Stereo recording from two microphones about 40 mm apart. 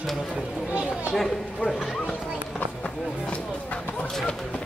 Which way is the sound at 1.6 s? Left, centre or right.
Left.